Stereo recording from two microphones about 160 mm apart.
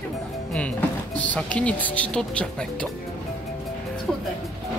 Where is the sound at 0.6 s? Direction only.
10° left (ahead or behind).